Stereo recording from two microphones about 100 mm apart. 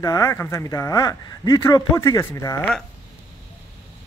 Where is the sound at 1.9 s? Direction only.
30° left (ahead or behind).